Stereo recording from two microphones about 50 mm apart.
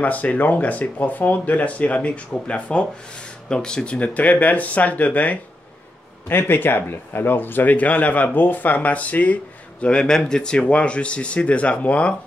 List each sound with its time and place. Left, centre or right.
0.0 s speech: left
6.2 s speech: left
9.8 s speech: centre